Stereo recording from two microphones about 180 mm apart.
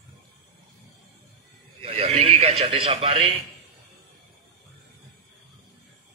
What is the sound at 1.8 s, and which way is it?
Speech, 35° right (ahead or behind).